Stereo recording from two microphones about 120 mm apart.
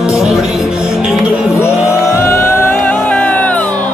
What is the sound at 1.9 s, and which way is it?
Music, 20° left (ahead or behind).